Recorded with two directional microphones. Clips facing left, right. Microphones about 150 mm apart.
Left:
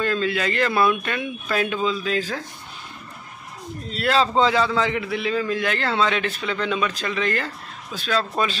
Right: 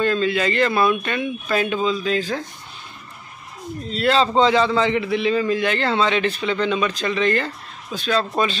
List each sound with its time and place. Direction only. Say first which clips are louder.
0.0 s a man's voice: right 3 dB; centre (ahead or behind)
3.9 s a man's voice: right 2 dB; 5° left (ahead or behind)